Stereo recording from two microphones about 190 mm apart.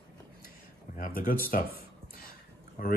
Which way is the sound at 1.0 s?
50° left (ahead or behind).